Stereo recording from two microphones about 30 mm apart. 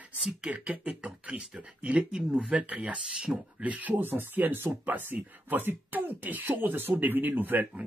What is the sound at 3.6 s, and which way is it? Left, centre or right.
Speech, right.